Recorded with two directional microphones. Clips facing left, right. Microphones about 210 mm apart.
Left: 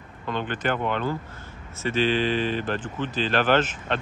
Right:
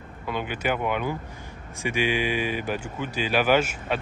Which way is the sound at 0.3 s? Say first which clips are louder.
Left 1 dB; 10° right (ahead or behind).